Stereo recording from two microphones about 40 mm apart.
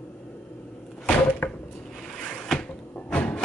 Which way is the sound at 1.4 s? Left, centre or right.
Left.